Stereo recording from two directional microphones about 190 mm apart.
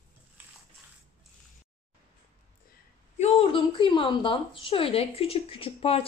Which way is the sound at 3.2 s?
30° left (ahead or behind).